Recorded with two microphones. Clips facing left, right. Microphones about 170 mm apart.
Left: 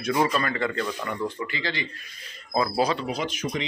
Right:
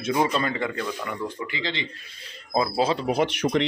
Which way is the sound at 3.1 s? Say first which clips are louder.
Right 6 dB; 65° right (ahead or behind).